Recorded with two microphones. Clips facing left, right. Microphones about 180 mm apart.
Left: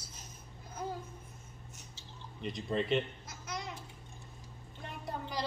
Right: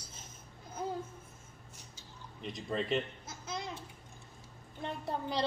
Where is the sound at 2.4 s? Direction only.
Centre (ahead or behind).